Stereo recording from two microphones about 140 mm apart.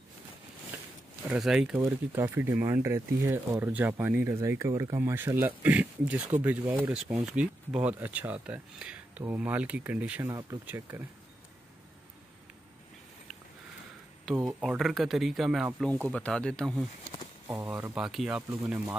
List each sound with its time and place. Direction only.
1.3 s speech: 5° right (ahead or behind)
1.9 s speech: 15° right (ahead or behind)
14.3 s speech: 15° right (ahead or behind)
14.6 s speech: centre (ahead or behind)
17.6 s speech: 15° right (ahead or behind)
17.9 s speech: 5° right (ahead or behind)